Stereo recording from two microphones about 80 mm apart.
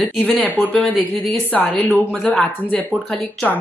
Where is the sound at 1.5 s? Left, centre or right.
Left.